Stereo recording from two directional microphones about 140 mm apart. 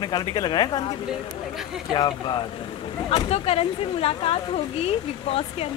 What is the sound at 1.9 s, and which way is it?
Speech, 35° left (ahead or behind).